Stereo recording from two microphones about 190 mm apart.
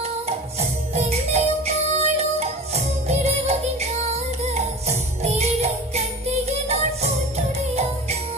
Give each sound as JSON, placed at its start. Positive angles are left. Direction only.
{"t": 0.9, "sound": "music", "side_deg": -35}